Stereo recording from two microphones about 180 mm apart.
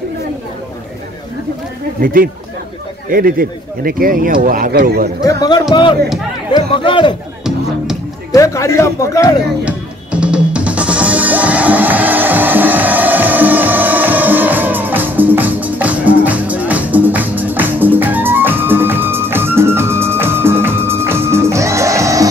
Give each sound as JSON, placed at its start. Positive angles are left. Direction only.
{"t": 2.0, "sound": "speech", "side_deg": -50}
{"t": 5.2, "sound": "speech", "side_deg": 20}
{"t": 7.4, "sound": "music", "side_deg": -5}
{"t": 8.3, "sound": "speech", "side_deg": 15}
{"t": 9.7, "sound": "music", "side_deg": -5}